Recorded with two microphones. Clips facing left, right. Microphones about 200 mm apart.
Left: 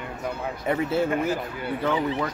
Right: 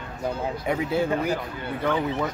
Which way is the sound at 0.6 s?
5° left (ahead or behind).